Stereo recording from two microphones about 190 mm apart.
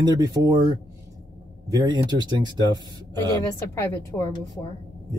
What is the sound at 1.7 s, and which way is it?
Speech, 20° right (ahead or behind).